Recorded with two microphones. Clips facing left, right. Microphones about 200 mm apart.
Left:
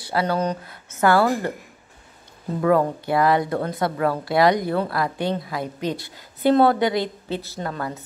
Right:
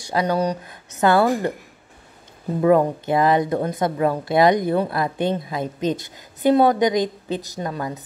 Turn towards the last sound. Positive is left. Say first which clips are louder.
# right 2 dB
turn(degrees=-15)  # may be behind; listen again after turning